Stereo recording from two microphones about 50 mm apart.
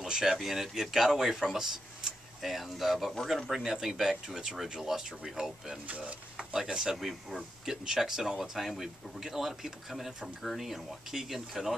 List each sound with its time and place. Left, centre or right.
0.0 s a man's voice: centre
5.9 s speech: right
6.3 s speech: centre
7.0 s speech: centre